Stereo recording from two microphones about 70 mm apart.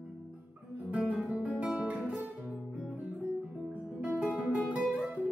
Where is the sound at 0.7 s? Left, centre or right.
Right.